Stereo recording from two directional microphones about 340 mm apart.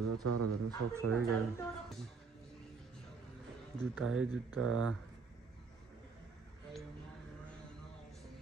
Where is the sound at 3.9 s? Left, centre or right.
Right.